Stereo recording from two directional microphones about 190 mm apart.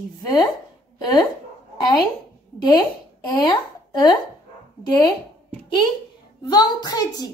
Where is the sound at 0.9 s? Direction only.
20° left (ahead or behind).